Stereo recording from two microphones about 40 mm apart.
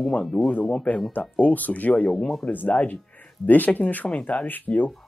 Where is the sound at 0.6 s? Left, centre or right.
Left.